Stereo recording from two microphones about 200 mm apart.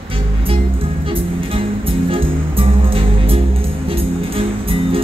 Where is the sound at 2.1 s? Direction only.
25° right (ahead or behind).